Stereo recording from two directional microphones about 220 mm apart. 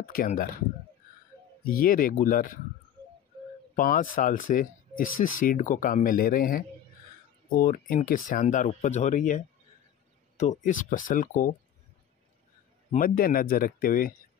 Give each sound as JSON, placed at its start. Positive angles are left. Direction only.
{"t": 0.0, "sound": "speech", "side_deg": 40}
{"t": 1.7, "sound": "speech", "side_deg": 40}
{"t": 3.7, "sound": "speech", "side_deg": 40}
{"t": 10.4, "sound": "speech", "side_deg": 35}
{"t": 12.9, "sound": "speech", "side_deg": 40}